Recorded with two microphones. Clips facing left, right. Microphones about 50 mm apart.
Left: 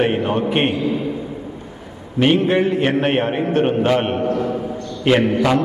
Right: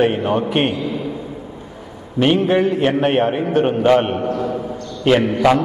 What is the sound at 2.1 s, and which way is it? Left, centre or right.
A man's voice, centre.